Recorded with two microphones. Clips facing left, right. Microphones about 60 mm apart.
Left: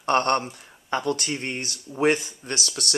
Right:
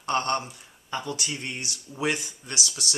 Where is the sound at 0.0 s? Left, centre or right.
Left.